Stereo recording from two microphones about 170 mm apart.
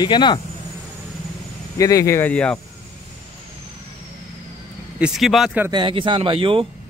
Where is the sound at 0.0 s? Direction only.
25° left (ahead or behind).